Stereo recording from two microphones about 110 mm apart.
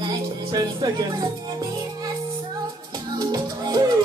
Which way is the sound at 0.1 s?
40° right (ahead or behind).